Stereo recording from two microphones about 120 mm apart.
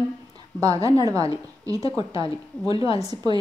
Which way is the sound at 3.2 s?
35° right (ahead or behind).